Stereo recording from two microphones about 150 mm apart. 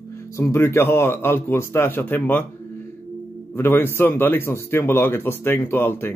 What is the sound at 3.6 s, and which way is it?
Speech, 15° left (ahead or behind).